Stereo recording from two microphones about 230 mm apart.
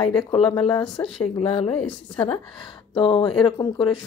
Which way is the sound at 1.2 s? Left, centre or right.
Left.